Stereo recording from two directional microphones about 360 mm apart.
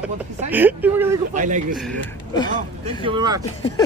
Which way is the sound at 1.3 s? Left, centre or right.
Right.